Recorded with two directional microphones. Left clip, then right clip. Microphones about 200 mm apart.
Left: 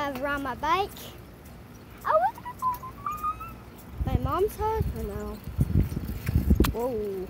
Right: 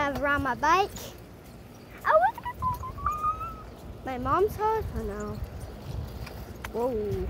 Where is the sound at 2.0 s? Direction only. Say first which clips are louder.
Right 2 dB; 15° right (ahead or behind).